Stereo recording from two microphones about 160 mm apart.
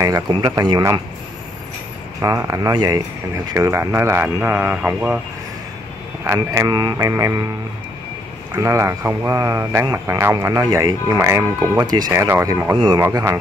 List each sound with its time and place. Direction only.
0.3 s speech: 25° right (ahead or behind)
2.2 s speech: 20° right (ahead or behind)
6.2 s speech: 20° right (ahead or behind)
8.5 s speech: 20° right (ahead or behind)